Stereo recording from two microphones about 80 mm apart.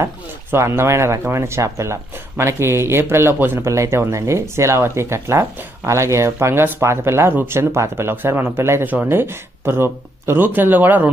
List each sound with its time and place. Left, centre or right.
0.0 s speech: right
3.6 s speech: right